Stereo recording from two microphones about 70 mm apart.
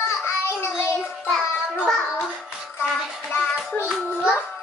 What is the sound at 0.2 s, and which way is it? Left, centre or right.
Child singing, left.